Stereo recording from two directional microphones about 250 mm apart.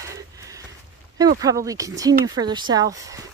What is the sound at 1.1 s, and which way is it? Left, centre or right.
Speech, centre.